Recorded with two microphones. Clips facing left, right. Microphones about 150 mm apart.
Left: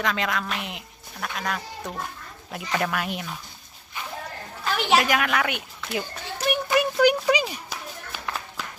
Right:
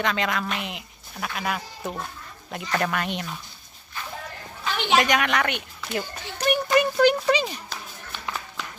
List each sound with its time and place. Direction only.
0.0 s speech: centre (ahead or behind)
4.6 s a woman's voice: centre (ahead or behind)
6.3 s children playing: 5° left (ahead or behind)